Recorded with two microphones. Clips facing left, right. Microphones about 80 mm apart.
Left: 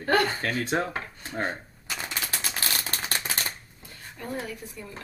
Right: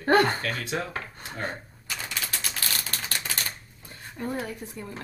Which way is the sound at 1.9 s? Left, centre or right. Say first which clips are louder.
Left 1 dB; centre.